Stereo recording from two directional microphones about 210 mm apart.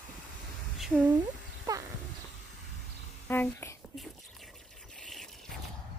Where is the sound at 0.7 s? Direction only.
Centre (ahead or behind).